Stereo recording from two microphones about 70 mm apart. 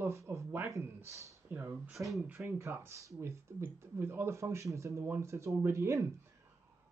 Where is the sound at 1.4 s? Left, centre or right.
Right.